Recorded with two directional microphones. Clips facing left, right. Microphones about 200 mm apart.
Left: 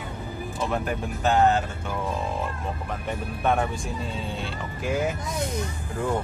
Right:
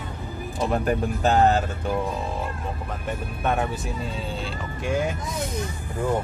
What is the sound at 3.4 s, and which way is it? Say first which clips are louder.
Speech: left 1 dB; centre (ahead or behind).